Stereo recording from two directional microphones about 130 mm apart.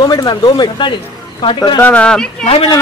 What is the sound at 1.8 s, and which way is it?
Speech, 10° left (ahead or behind).